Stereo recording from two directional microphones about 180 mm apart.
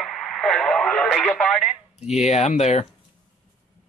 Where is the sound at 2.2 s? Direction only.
40° left (ahead or behind).